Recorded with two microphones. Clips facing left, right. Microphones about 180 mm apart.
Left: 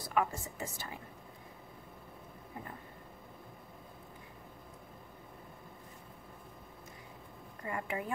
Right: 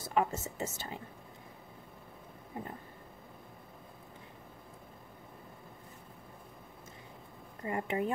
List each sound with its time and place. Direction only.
0.0 s a woman's voice: 25° right (ahead or behind)
7.6 s a woman's voice: 25° right (ahead or behind)